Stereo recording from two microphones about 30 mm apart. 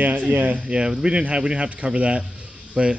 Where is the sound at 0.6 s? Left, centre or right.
Right.